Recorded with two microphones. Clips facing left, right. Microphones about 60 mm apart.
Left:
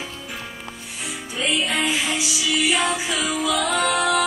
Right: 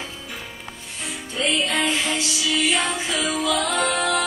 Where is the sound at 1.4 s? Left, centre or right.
Centre.